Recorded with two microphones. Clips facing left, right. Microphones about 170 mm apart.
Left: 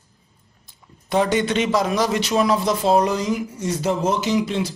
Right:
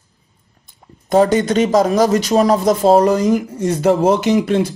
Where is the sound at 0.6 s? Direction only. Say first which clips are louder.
Right 6 dB; 45° right (ahead or behind).